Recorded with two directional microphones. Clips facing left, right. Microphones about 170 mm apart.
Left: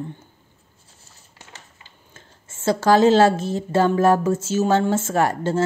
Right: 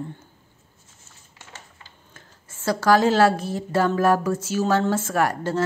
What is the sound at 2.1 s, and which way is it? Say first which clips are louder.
A woman's voice: left 1 dB; 25° left (ahead or behind).